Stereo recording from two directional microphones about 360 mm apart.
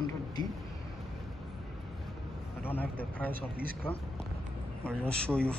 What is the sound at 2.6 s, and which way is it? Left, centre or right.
Speech, centre.